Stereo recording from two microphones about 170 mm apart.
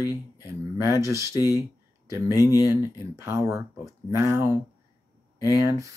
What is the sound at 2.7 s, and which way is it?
Speech, 15° right (ahead or behind).